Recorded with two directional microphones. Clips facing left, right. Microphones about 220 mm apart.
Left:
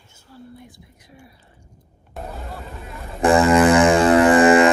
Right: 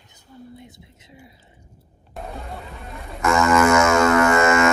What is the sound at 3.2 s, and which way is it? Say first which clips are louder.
Music: left 3 dB; 35° left (ahead or behind).